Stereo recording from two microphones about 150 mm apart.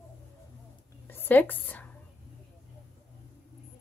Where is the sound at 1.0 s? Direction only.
15° left (ahead or behind).